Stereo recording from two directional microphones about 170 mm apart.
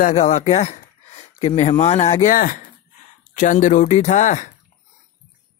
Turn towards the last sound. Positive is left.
turn(degrees=45)  # may be behind; listen again after turning